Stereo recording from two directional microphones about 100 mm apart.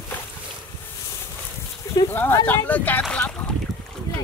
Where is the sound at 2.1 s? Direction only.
20° left (ahead or behind).